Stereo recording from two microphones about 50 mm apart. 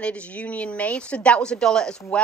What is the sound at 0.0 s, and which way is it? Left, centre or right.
A woman's voice, left.